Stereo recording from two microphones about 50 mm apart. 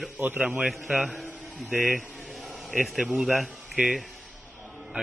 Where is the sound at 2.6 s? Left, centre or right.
Centre.